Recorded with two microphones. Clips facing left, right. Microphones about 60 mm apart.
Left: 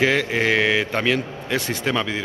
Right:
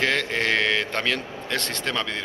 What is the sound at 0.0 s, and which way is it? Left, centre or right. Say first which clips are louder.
A man's voice: left 4 dB; centre.